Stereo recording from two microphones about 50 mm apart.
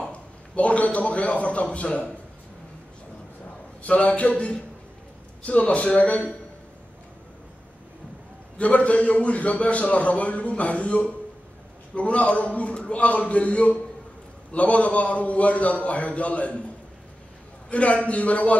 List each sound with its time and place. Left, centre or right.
0.0 s a man's voice: left
3.8 s a man's voice: left
8.5 s a man's voice: left